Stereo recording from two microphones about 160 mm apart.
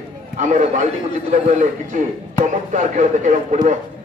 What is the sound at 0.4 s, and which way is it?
A man's voice, 50° right (ahead or behind).